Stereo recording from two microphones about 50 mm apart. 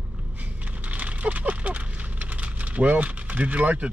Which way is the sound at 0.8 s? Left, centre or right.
Right.